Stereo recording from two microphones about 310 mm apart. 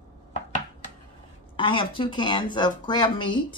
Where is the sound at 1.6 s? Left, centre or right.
Centre.